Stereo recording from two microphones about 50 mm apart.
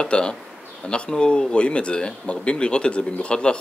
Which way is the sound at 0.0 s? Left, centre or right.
Centre.